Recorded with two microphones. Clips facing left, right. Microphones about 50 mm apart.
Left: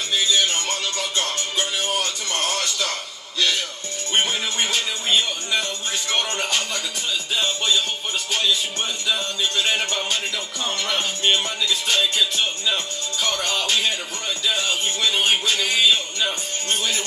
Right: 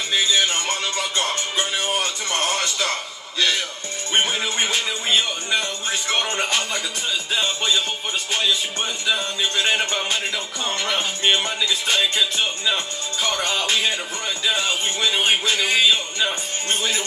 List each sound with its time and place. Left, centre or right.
0.1 s music: right
4.1 s speech: centre
4.7 s music: centre
9.0 s music: centre